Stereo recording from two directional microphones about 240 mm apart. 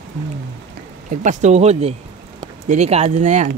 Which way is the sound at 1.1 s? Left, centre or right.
Right.